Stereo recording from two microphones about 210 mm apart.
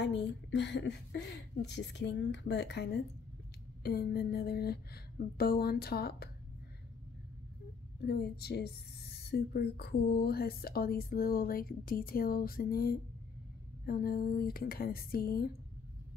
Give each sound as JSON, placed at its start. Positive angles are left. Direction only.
{"t": 0.0, "sound": "a woman's voice", "side_deg": 55}
{"t": 8.0, "sound": "speech", "side_deg": 50}